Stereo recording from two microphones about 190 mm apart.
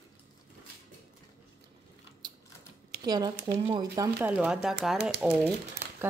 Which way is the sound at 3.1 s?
20° right (ahead or behind).